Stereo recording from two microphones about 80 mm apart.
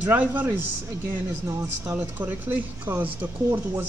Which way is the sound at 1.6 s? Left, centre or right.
Right.